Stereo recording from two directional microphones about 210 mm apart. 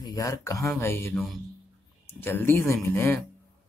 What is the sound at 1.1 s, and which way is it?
A man's voice, centre (ahead or behind).